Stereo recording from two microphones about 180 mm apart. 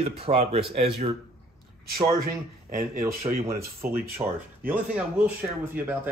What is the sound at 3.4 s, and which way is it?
A man's voice, 15° right (ahead or behind).